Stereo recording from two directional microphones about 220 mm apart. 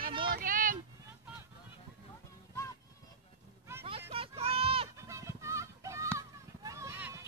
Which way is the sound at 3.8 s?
25° right (ahead or behind).